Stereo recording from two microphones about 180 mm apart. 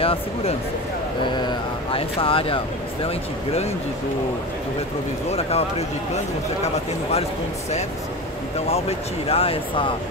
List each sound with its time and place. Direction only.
0.0 s speech: 30° left (ahead or behind)
5.3 s speech: 35° left (ahead or behind)
8.5 s speech: 35° left (ahead or behind)